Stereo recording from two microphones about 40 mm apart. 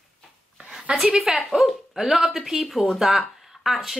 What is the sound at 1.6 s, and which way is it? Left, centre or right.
Speech, centre.